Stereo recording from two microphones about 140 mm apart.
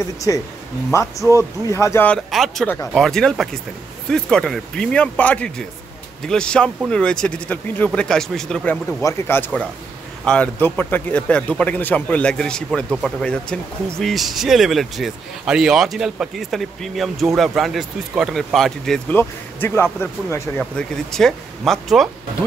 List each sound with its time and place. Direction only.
0.3 s speech: 25° left (ahead or behind)
2.0 s speech: centre (ahead or behind)
9.0 s speech: 15° left (ahead or behind)
19.0 s speech: 15° left (ahead or behind)
20.7 s speech: 5° left (ahead or behind)